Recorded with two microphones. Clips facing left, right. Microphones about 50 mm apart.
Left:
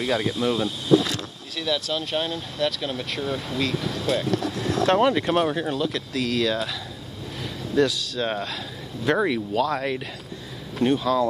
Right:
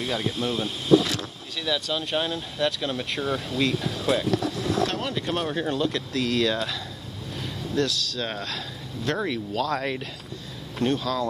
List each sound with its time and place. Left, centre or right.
0.3 s speech: right
1.6 s speech: centre
3.2 s speech: centre
4.8 s speech: left
5.2 s speech: centre
5.5 s speech: centre
7.7 s speech: centre